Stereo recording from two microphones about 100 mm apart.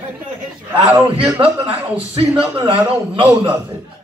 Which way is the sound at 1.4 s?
80° right.